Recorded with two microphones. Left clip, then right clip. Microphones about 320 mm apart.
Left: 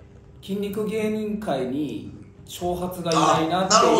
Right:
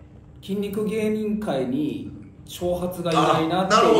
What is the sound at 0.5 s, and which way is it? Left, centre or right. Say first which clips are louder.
A man's voice: right 1 dB; centre.